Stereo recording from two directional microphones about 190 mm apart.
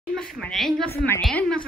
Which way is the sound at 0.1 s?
Centre (ahead or behind).